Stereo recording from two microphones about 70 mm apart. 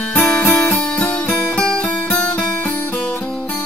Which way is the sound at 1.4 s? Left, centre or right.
Centre.